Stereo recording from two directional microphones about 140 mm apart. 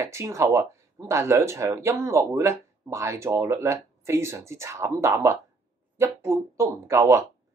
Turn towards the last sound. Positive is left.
turn(degrees=-20)  # may be behind; listen again after turning